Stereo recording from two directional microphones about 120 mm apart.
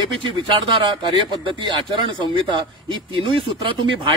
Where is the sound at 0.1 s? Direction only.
45° right (ahead or behind).